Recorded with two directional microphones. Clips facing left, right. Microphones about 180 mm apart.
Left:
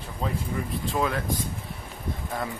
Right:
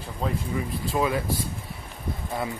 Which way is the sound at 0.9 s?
5° right (ahead or behind).